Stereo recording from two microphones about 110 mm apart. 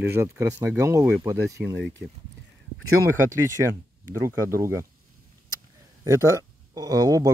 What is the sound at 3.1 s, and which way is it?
Speech, 25° right (ahead or behind).